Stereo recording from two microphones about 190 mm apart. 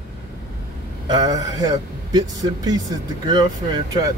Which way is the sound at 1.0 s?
20° right (ahead or behind).